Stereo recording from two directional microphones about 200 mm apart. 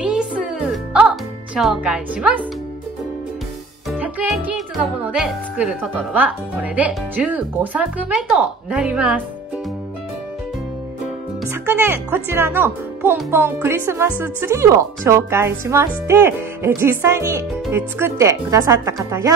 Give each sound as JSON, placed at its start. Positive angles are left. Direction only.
{"t": 0.0, "sound": "music", "side_deg": -5}
{"t": 4.0, "sound": "music", "side_deg": -10}
{"t": 5.1, "sound": "speech", "side_deg": -5}
{"t": 11.8, "sound": "speech", "side_deg": -10}